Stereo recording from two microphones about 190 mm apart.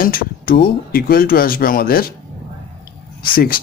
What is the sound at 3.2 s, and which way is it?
Speech, 50° left (ahead or behind).